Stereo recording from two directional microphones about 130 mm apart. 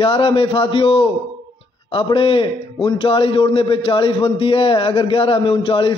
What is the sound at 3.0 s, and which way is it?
A man's voice, 45° left (ahead or behind).